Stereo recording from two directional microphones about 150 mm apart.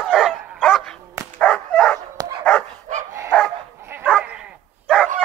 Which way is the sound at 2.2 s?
25° right (ahead or behind).